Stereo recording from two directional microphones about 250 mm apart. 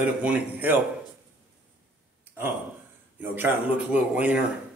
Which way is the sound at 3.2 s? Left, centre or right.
Centre.